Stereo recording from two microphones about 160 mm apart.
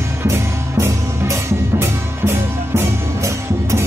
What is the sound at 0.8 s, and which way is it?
Music, 15° right (ahead or behind).